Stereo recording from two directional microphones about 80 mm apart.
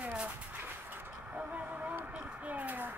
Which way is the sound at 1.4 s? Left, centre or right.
Centre.